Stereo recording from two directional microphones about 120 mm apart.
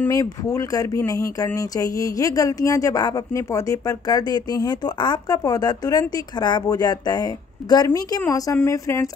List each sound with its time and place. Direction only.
0.1 s speech: 30° left (ahead or behind)